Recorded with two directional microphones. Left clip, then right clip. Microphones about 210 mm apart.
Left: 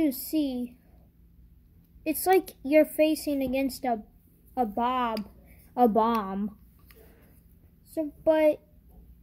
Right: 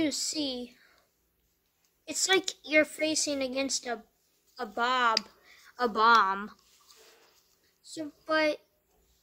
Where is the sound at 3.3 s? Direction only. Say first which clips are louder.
Left 2 dB; centre (ahead or behind).